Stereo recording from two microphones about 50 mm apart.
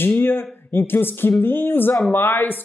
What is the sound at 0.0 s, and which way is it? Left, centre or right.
Speech, left.